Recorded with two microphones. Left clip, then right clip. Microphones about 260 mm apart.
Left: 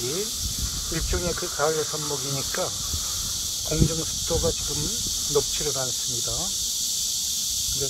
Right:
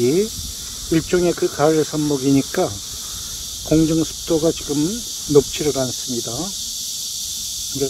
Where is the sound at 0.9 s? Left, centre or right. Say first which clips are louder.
Right 13 dB; right.